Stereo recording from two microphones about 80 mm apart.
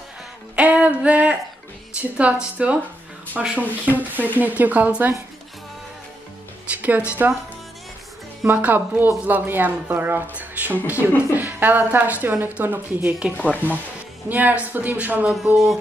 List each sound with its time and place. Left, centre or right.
0.6 s a sound: centre
2.0 s a woman's voice: centre
6.7 s music: right
7.1 s speech: right
8.5 s speech: right
14.3 s speech: centre
15.5 s a sound: centre